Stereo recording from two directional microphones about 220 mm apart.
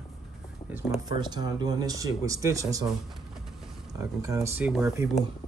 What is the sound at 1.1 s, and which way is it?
Speech, 20° right (ahead or behind).